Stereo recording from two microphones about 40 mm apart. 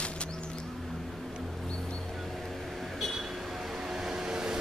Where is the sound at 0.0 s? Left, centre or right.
Left.